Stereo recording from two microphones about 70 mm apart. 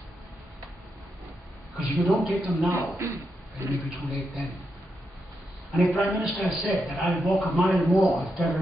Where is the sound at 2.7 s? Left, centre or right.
Right.